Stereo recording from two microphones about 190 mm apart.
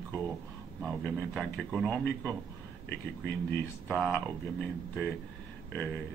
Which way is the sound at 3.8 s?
5° left (ahead or behind).